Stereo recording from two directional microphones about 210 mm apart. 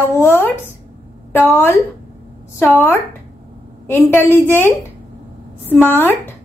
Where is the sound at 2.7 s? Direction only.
10° left (ahead or behind).